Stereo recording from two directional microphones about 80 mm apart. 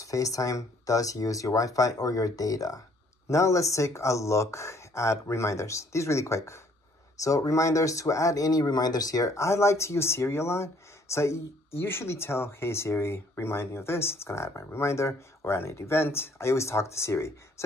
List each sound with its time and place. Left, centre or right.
0.0 s speech: left